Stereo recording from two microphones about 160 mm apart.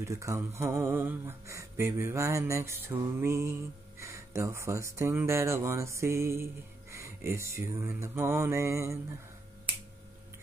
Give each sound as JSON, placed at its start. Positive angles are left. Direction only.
{"t": 0.0, "sound": "speech", "side_deg": -20}